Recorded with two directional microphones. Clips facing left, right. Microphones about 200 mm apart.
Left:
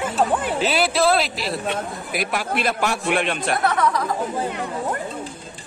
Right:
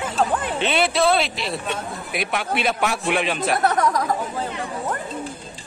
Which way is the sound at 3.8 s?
45° right (ahead or behind).